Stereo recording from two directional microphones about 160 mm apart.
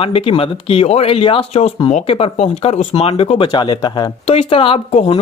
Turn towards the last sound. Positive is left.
turn(degrees=40)  # may be behind; listen again after turning